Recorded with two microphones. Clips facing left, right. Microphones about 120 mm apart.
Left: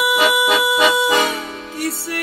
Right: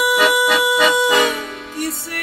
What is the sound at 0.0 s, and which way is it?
Music, 10° left (ahead or behind).